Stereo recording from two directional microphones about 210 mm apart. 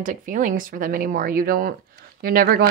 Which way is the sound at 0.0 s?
40° right (ahead or behind).